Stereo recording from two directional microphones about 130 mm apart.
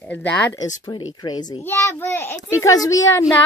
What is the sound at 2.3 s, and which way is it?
Speech, 30° left (ahead or behind).